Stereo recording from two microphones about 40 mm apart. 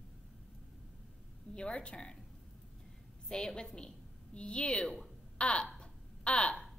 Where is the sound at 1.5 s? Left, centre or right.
Left.